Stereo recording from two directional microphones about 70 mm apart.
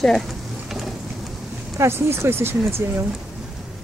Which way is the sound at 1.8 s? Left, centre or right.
Right.